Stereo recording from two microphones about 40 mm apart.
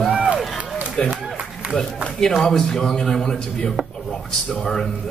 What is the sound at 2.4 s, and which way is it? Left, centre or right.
Speech, centre.